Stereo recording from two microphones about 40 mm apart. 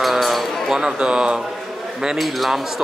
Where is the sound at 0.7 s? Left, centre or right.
Centre.